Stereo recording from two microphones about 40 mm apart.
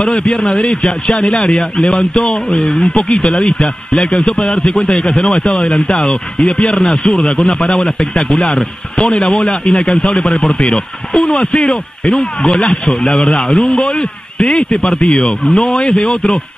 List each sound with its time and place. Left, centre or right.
0.0 s a man's voice: left
12.5 s speech: left
13.4 s a man's voice: centre